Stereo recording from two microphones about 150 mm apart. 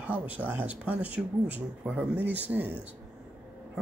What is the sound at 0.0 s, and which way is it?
Speech, 10° right (ahead or behind).